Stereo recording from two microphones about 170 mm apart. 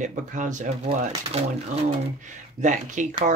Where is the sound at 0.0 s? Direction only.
45° right (ahead or behind).